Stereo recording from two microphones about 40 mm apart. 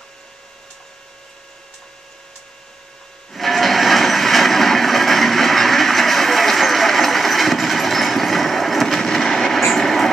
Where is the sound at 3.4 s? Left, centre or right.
Centre.